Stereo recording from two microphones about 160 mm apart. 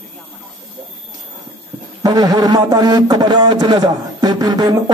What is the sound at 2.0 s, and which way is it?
A man's voice, 25° right (ahead or behind).